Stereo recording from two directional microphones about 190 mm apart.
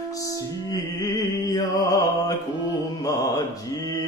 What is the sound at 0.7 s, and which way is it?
Music, 20° left (ahead or behind).